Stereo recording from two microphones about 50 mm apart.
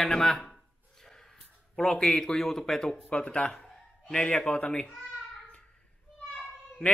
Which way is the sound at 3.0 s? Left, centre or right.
Left.